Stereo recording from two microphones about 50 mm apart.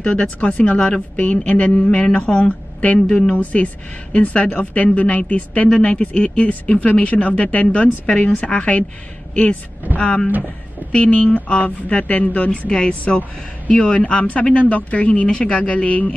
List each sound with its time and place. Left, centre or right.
0.0 s a man's voice: left
10.8 s speech: right
11.3 s a man's voice: left
12.4 s a man's voice: left